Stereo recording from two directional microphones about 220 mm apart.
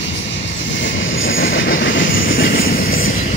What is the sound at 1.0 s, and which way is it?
Train, 60° left (ahead or behind).